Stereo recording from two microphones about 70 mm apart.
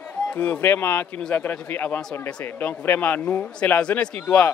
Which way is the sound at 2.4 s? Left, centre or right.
Left.